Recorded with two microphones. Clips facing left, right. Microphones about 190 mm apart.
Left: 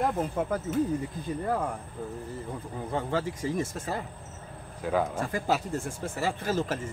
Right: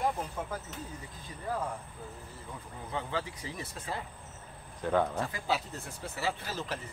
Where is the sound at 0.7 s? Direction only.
50° left (ahead or behind).